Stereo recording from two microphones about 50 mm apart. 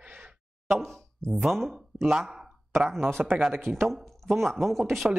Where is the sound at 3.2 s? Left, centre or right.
Right.